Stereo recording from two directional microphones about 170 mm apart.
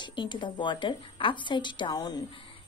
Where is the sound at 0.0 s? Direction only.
25° left (ahead or behind).